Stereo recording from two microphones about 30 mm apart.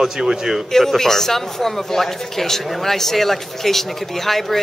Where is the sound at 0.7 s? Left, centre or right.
Centre.